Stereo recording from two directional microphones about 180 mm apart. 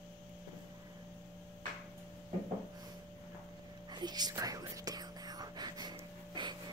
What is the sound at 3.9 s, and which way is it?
Whispering, 25° right (ahead or behind).